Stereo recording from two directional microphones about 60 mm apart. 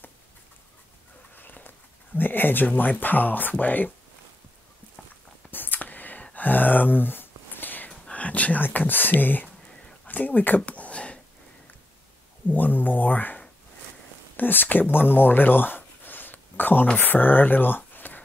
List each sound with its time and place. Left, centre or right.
1.3 s bird: left
2.1 s speech: left
5.5 s a sound: left
6.3 s whispering: left
8.1 s speech: left
10.0 s a sound: left
12.5 s speech: left